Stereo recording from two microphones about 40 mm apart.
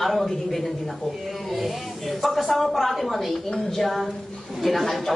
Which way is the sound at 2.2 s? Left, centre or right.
Centre.